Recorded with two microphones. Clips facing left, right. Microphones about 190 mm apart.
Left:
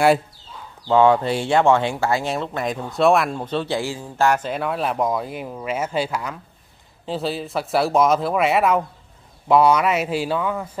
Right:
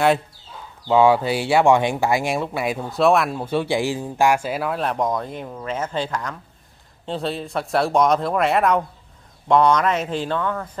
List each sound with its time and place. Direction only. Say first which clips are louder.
0.8 s speech: even; 10° right (ahead or behind); by 10.7 s 10° left (ahead or behind)